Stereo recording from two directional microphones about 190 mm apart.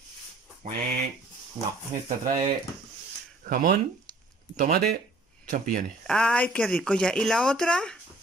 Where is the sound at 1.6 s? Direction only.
30° right (ahead or behind).